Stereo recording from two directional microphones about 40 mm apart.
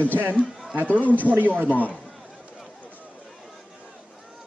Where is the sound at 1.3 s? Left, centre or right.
Right.